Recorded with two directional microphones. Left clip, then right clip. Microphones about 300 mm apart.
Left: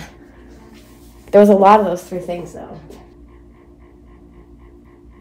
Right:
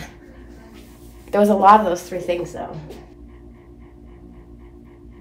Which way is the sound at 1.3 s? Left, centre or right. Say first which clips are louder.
Left 5 dB; left.